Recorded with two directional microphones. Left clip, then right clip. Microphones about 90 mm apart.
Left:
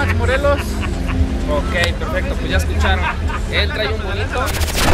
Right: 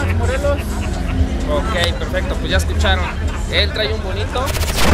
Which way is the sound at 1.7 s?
15° right (ahead or behind).